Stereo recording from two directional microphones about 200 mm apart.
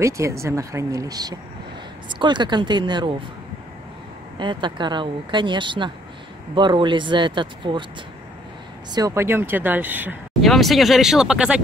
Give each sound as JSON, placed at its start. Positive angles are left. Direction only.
{"t": 0.0, "sound": "speech", "side_deg": -15}
{"t": 4.4, "sound": "speech", "side_deg": -25}
{"t": 8.9, "sound": "speech", "side_deg": -15}